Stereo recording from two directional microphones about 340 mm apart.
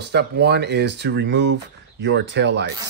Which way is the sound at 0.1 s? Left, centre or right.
Right.